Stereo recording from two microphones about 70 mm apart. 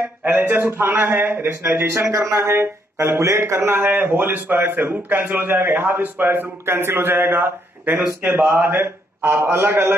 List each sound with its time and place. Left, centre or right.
0.2 s speech: right
2.2 s speech: right
2.5 s speech: right; by 8.7 s centre
8.7 s speech: right